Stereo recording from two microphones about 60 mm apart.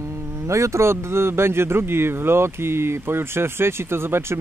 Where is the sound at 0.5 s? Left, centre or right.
Right.